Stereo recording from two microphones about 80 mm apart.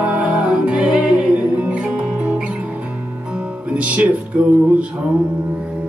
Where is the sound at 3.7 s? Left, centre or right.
Centre.